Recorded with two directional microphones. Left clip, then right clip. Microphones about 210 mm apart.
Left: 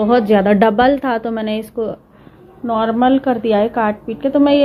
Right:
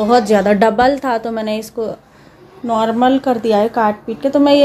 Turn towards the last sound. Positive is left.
turn(degrees=-20)  # may be behind; listen again after turning